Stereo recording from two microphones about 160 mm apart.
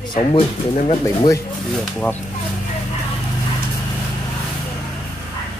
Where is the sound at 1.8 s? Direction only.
10° left (ahead or behind).